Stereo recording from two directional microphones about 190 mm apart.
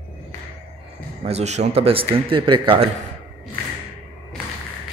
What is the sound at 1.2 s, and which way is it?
Speech, 35° right (ahead or behind).